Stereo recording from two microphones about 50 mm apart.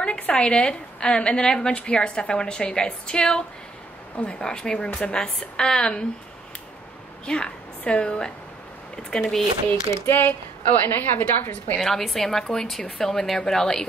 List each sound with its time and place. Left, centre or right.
0.0 s a woman's voice: centre
7.2 s a woman's voice: left
9.7 s speech: left
11.8 s a woman's voice: centre